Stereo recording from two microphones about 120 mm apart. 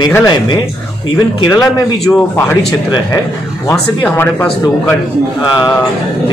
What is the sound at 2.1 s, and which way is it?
Speech, 10° left (ahead or behind).